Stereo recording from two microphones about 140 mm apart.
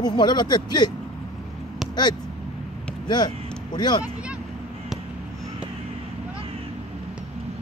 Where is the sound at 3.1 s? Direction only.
30° left (ahead or behind).